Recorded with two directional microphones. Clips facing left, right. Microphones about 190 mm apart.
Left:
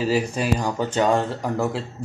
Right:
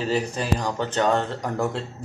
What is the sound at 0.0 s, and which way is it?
Speech, 10° left (ahead or behind).